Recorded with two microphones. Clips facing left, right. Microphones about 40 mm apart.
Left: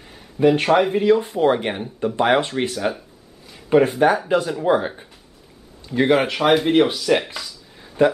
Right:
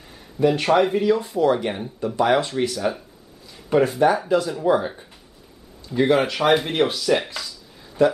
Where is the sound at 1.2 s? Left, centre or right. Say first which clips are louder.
Left 1 dB; left; by 7.5 s centre.